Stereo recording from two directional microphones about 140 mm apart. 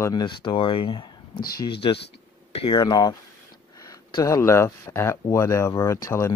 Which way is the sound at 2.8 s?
25° left (ahead or behind).